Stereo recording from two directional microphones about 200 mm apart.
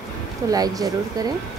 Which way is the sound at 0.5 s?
20° right (ahead or behind).